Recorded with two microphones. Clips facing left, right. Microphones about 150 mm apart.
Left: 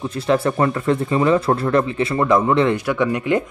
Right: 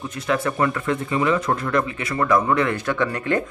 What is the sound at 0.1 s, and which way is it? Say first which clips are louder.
Speech: left 5 dB; 30° left (ahead or behind).